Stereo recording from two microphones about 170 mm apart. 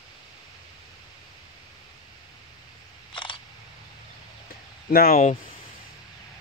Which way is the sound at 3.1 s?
30° left (ahead or behind).